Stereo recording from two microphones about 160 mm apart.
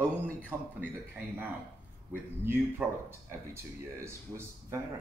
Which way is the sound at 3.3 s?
15° right (ahead or behind).